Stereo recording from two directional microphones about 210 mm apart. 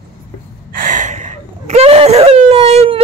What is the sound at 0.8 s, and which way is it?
Whimper, 35° right (ahead or behind).